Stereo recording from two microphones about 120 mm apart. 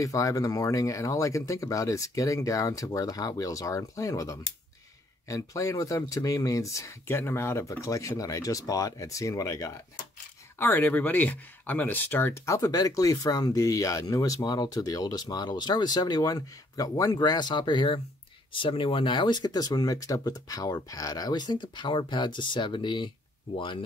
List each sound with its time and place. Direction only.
0.0 s speech: 30° left (ahead or behind)
10.6 s speech: 15° left (ahead or behind); by 23.1 s 40° left (ahead or behind)